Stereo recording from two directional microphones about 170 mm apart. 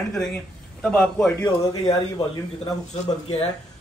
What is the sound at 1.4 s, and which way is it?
Speech, 25° left (ahead or behind).